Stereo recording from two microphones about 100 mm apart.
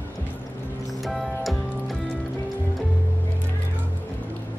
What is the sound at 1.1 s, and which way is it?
Music, centre (ahead or behind).